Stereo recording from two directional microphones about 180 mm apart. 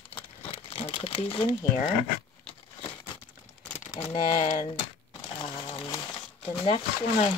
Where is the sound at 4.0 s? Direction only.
35° left (ahead or behind).